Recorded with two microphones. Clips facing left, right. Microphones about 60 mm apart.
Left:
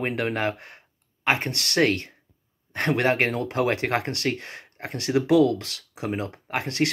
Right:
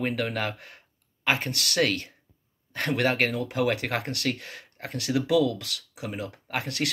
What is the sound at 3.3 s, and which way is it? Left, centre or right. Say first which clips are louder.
Speech: left 2 dB; left.